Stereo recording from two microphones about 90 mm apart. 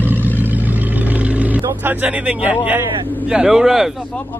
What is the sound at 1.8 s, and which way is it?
Speech, 20° right (ahead or behind).